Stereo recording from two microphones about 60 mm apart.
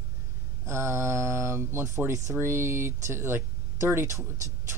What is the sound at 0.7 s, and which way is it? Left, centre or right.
Speech, right.